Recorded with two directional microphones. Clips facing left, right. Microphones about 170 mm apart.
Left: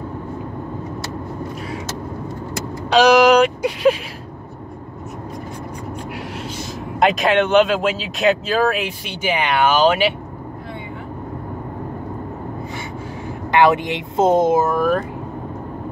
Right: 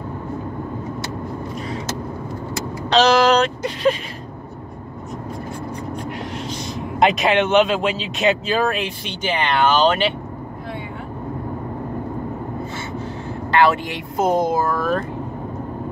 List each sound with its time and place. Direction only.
2.9 s speech: 15° left (ahead or behind)
6.3 s speech: 5° left (ahead or behind)
13.5 s speech: 20° left (ahead or behind)